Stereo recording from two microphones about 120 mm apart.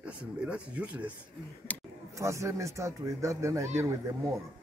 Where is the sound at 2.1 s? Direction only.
25° right (ahead or behind).